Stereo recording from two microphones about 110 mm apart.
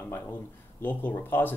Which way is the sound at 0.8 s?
15° left (ahead or behind).